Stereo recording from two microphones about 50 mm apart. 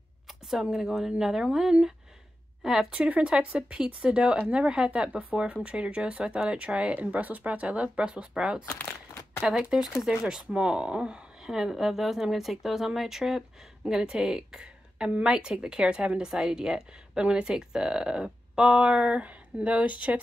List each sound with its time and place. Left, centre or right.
0.3 s a woman's voice: centre
3.0 s a woman's voice: right